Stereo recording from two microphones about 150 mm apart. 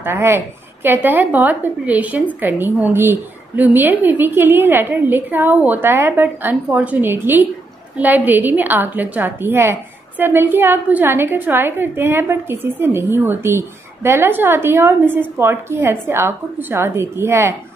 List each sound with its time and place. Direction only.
0.0 s a woman's voice: 15° right (ahead or behind)